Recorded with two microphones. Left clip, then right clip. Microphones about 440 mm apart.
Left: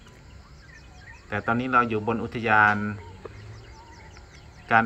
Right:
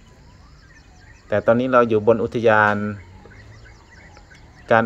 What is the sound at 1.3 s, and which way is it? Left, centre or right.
Speech, centre.